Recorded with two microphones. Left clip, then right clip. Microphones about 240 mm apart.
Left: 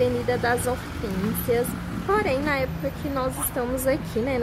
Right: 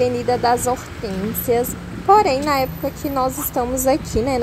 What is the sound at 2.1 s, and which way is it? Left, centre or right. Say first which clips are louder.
Speech: right 9 dB; centre.